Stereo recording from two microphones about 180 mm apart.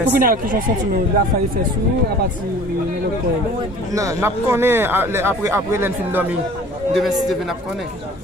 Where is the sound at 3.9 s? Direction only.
20° right (ahead or behind).